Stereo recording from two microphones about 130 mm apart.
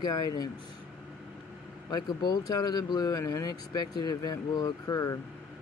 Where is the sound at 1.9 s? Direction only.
35° left (ahead or behind).